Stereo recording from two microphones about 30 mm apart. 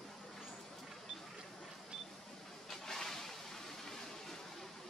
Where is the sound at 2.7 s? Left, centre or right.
Centre.